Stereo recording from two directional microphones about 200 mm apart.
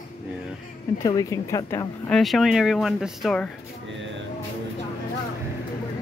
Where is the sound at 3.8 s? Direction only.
65° right (ahead or behind).